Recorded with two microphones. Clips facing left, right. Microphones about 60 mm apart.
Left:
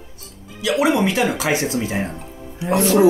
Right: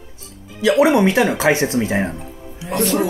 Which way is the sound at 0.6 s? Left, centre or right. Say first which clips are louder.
Right 4 dB; right.